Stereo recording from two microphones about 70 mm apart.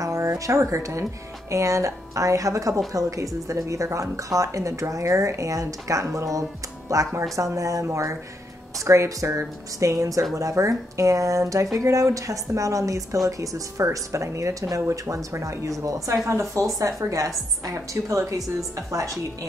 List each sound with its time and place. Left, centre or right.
0.0 s speech: right